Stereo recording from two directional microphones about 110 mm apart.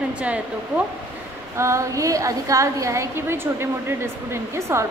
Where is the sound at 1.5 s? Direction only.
25° right (ahead or behind).